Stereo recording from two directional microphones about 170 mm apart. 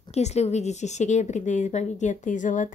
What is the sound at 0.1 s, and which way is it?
A woman's voice, 40° left (ahead or behind).